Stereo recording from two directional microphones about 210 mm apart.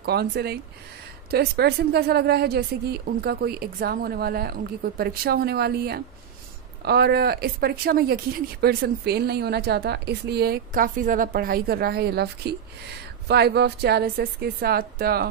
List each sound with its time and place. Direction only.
0.0 s speech: 50° right (ahead or behind)